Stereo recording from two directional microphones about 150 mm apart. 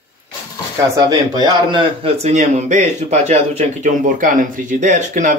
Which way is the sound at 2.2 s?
50° right (ahead or behind).